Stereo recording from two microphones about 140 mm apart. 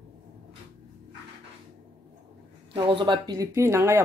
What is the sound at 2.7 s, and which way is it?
Speech, 35° right (ahead or behind).